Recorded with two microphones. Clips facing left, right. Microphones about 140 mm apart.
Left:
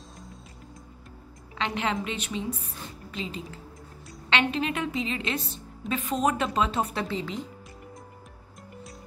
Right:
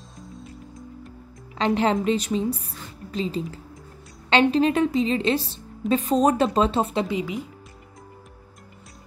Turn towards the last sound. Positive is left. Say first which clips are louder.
# right 5 dB
turn(degrees=-10)  # may be behind; listen again after turning